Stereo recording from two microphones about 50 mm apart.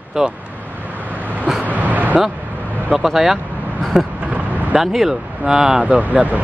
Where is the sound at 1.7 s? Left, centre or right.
Right.